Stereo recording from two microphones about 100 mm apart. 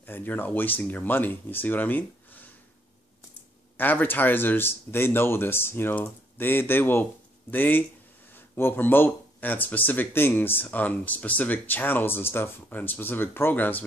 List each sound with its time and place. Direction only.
0.0 s speech: 20° left (ahead or behind)
3.7 s speech: 20° left (ahead or behind)